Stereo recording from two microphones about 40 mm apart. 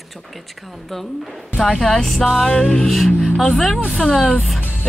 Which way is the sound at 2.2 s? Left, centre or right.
Centre.